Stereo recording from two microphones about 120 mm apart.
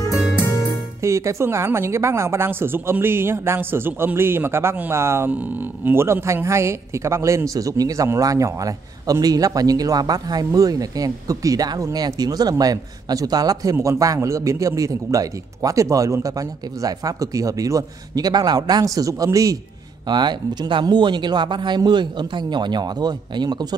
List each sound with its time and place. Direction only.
1.0 s speech: 25° right (ahead or behind)
20.1 s speech: 40° right (ahead or behind)